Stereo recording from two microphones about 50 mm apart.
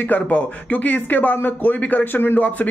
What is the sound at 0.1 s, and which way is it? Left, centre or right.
A man's voice, left.